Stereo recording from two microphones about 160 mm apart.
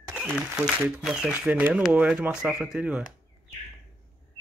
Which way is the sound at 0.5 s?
5° right (ahead or behind).